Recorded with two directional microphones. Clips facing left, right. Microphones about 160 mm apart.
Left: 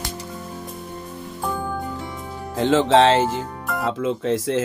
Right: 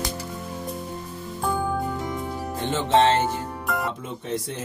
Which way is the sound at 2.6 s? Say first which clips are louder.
Left 5 dB; 90° left.